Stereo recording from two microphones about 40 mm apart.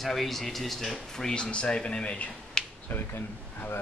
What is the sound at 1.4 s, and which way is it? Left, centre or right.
Speech, left.